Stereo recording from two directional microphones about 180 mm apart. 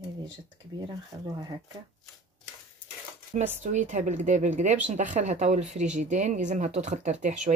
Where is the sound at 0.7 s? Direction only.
20° right (ahead or behind).